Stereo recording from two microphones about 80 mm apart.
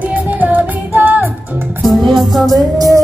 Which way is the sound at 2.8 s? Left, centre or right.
Right.